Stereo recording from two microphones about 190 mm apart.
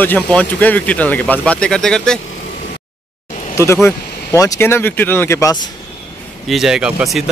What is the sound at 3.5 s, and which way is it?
Speech, 15° left (ahead or behind).